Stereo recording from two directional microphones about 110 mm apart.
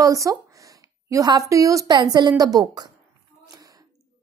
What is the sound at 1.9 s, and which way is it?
Speech, 45° right (ahead or behind).